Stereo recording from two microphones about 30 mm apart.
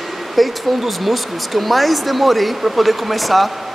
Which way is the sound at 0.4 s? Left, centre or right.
Centre.